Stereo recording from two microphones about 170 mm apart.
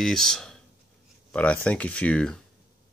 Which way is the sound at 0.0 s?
Centre (ahead or behind).